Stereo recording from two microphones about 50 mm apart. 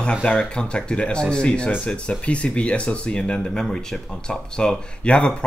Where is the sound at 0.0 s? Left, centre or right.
Centre.